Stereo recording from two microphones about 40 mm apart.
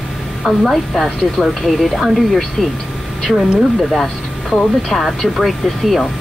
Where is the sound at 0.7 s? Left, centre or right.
Centre.